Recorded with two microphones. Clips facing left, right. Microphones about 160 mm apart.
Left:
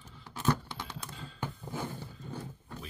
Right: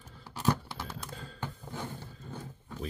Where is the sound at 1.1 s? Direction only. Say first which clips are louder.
Right 2 dB; 45° right (ahead or behind).